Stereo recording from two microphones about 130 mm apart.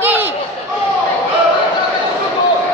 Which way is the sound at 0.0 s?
15° right (ahead or behind).